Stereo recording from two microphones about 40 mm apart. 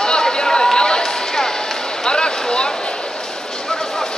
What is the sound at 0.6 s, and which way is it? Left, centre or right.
Run, centre.